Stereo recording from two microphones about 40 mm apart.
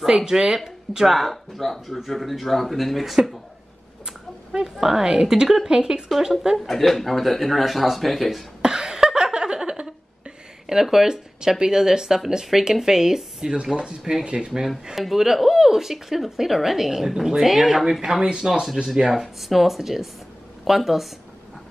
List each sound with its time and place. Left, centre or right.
0.0 s speech: centre
0.9 s speech: centre
4.0 s speech: centre
6.6 s speech: centre
8.6 s a sound: centre
10.7 s speech: centre
15.0 s speech: centre
19.2 s speech: centre